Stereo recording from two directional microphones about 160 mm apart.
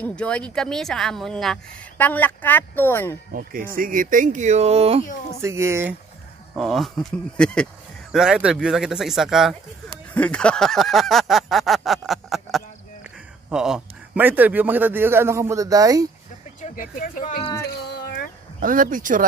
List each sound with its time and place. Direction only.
0.0 s speech: 5° left (ahead or behind)
3.3 s speech: 60° right (ahead or behind); by 5.0 s 40° right (ahead or behind)
5.4 s a man's voice: 15° right (ahead or behind)
6.5 s speech: centre (ahead or behind)
10.1 s a sound: 5° left (ahead or behind)
13.5 s a man's voice: 5° right (ahead or behind); by 16.1 s 20° right (ahead or behind)
16.6 s speech: 60° left (ahead or behind)
17.6 s a sound: 80° left
18.6 s speech: 60° right (ahead or behind)